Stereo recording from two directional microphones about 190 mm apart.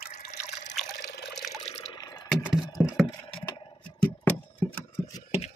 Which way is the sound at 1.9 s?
20° left (ahead or behind).